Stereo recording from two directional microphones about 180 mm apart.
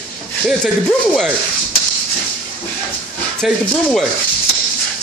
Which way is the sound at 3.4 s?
Centre (ahead or behind).